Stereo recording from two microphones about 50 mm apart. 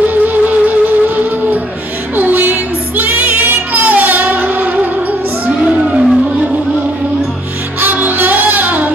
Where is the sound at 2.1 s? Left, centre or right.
Right.